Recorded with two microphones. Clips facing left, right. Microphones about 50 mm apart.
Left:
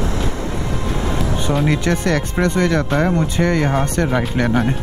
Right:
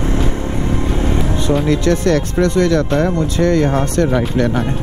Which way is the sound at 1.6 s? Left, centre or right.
Centre.